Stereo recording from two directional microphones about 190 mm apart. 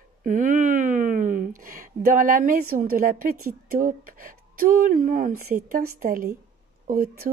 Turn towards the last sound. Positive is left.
turn(degrees=-55)  # may be behind; listen again after turning